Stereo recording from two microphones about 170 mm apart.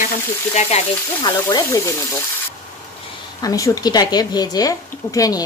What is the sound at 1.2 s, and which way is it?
Speech, 25° left (ahead or behind).